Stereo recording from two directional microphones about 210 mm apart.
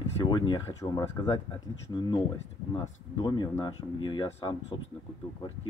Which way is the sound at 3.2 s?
20° left (ahead or behind).